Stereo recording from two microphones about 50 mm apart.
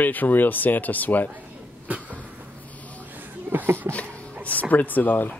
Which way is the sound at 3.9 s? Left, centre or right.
Left.